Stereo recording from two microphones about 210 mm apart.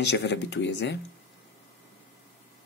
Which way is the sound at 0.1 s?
55° left (ahead or behind).